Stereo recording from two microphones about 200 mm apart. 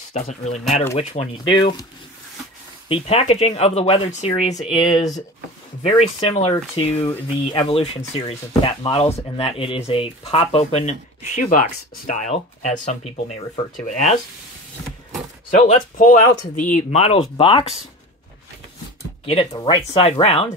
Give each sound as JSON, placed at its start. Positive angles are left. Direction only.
{"t": 0.1, "sound": "speech", "side_deg": 35}
{"t": 2.9, "sound": "speech", "side_deg": 30}
{"t": 15.5, "sound": "speech", "side_deg": 40}
{"t": 19.2, "sound": "speech", "side_deg": 30}